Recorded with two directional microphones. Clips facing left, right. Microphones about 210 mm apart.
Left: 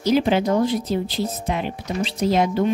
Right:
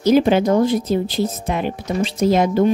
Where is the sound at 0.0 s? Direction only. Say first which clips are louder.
Right 4 dB; 50° right (ahead or behind).